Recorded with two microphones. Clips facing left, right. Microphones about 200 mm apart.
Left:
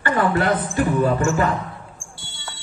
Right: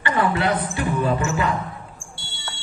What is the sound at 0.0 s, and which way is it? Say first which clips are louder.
Speech: left 2 dB; 45° left (ahead or behind).